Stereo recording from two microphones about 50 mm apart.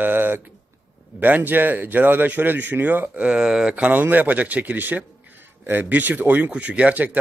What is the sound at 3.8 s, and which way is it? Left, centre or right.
A man's voice, right.